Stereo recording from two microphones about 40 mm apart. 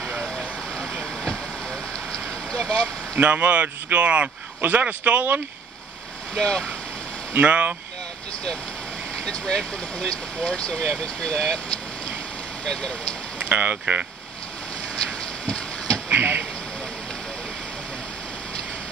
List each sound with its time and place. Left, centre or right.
0.2 s vehicle: left
3.2 s speech: right
4.6 s speech: right
6.3 s speech: centre
7.3 s speech: right
9.1 s vehicle: left
9.9 s speech: left
12.6 s speech: left
13.5 s speech: right
15.0 s a sound: left
16.1 s speech: right